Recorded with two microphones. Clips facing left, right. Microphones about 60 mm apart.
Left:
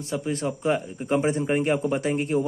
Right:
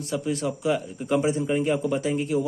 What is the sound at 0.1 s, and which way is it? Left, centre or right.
A man's voice, left.